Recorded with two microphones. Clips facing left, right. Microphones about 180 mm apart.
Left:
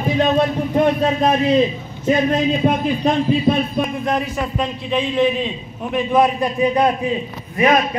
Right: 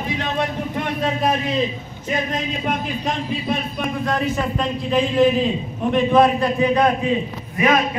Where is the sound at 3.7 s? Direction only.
20° left (ahead or behind).